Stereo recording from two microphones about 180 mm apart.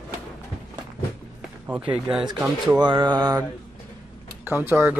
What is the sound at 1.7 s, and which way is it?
Speech, 5° right (ahead or behind).